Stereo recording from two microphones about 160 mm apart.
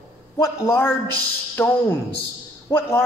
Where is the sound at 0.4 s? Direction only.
15° left (ahead or behind).